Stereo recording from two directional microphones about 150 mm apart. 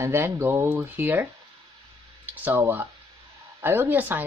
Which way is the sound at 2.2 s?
10° right (ahead or behind).